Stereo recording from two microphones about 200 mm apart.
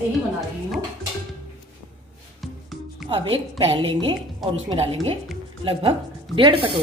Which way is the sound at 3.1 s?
25° right (ahead or behind).